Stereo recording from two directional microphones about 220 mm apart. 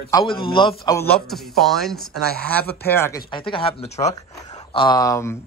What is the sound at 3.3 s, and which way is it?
Speech, 25° left (ahead or behind).